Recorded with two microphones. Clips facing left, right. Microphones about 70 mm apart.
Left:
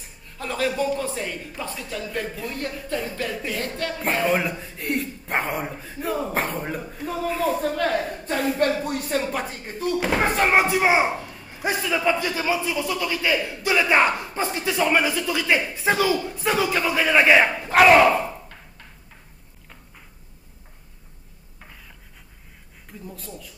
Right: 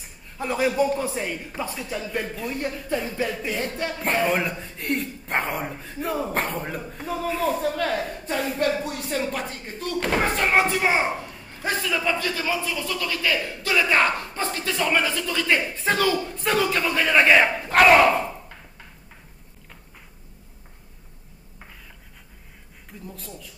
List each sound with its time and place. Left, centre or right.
0.4 s speech: centre
2.7 s a man's voice: centre
3.9 s a man's voice: centre
8.6 s speech: left
8.9 s a man's voice: centre
23.0 s a man's voice: centre